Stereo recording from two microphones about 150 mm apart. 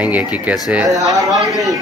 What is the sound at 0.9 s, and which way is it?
Speech, 20° right (ahead or behind).